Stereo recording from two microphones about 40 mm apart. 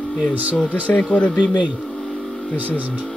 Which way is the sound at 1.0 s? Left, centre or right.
Left.